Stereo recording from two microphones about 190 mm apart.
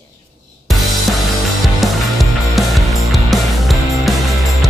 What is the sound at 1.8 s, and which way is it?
Music, centre (ahead or behind).